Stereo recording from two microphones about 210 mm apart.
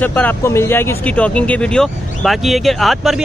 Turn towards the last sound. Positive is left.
turn(degrees=0)  # may be behind; listen again after turning